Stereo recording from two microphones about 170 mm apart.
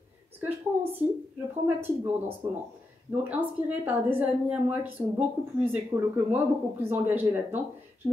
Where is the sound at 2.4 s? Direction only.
15° right (ahead or behind).